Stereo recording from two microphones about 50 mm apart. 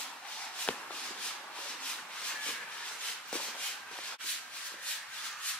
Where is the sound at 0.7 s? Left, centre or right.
Left.